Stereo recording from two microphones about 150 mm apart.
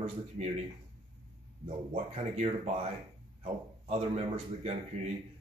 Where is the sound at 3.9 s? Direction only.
45° right (ahead or behind).